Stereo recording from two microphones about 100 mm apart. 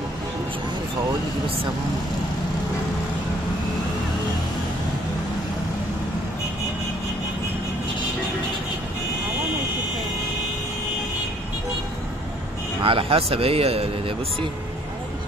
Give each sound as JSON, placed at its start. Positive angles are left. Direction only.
{"t": 12.8, "sound": "speech", "side_deg": -65}